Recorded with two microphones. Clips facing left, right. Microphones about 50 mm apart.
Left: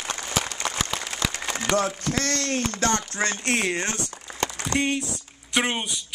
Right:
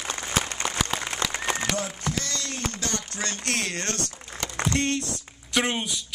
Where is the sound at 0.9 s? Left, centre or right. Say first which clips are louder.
Right 1 dB; right.